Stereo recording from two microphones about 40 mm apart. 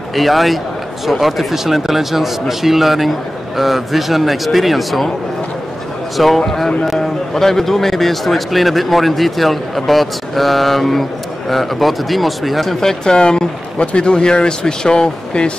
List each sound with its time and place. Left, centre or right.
0.1 s a man's voice: centre
6.1 s a man's voice: centre
13.0 s speech: centre